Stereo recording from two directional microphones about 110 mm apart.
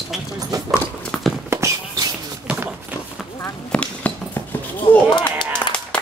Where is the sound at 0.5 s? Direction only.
35° right (ahead or behind).